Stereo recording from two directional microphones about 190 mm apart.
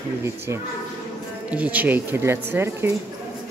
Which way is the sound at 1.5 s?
10° right (ahead or behind).